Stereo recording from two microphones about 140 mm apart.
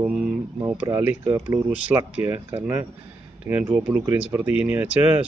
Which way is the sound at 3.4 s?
10° right (ahead or behind).